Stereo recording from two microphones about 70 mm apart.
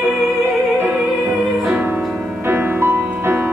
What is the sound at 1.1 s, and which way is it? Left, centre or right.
Music, centre.